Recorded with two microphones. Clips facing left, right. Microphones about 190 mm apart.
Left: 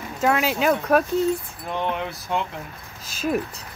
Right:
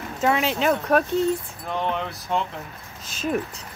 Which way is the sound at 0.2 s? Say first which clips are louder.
Left 1 dB; centre (ahead or behind).